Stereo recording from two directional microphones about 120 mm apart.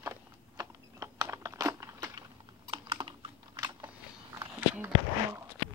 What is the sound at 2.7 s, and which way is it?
Typing, 40° right (ahead or behind).